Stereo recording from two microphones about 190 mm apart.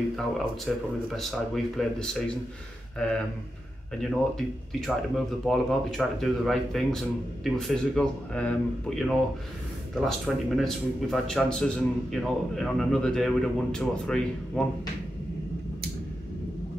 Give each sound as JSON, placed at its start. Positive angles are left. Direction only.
{"t": 0.7, "sound": "speech", "side_deg": 0}
{"t": 4.0, "sound": "speech", "side_deg": 0}